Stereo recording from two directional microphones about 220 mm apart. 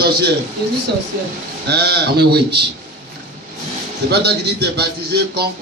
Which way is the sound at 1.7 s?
45° right (ahead or behind).